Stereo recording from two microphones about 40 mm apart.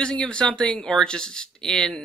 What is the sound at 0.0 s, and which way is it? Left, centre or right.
Speech, left.